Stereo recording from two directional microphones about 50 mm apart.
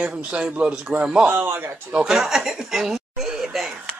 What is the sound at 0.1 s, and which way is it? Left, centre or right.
A man's voice, centre.